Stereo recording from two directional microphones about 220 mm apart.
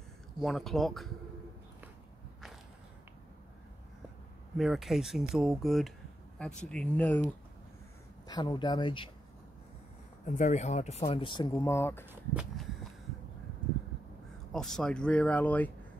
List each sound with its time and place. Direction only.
0.4 s speech: centre (ahead or behind)
4.6 s speech: centre (ahead or behind)
8.3 s speech: 20° left (ahead or behind)
10.2 s speech: 35° left (ahead or behind); by 12.1 s 10° left (ahead or behind)
12.1 s speech: 5° right (ahead or behind)
14.5 s speech: centre (ahead or behind)